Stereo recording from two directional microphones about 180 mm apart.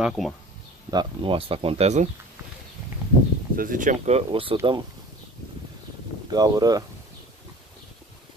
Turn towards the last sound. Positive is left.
turn(degrees=-20)  # may be behind; listen again after turning